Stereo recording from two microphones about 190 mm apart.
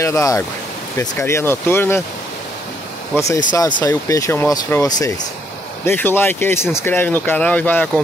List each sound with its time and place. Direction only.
0.0 s speech: 15° left (ahead or behind)
3.2 s speech: 15° left (ahead or behind)